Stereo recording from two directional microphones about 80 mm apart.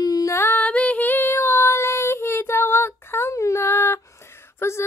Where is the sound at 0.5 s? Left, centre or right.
Centre; by 4.0 s left.